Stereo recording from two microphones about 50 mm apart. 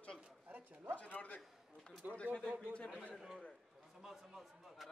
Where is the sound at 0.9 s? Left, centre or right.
Left.